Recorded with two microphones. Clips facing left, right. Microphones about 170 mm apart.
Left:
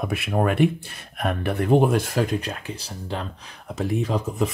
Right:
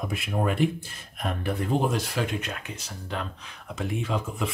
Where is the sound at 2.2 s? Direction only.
35° left (ahead or behind).